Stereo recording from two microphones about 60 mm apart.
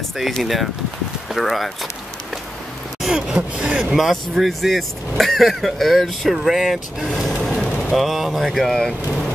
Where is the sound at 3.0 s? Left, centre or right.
Centre.